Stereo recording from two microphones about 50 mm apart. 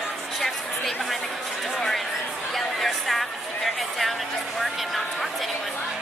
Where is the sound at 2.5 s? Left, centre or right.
Centre.